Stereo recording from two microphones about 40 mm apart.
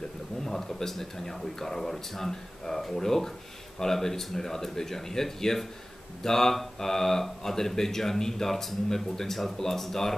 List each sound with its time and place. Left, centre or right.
0.4 s speech: centre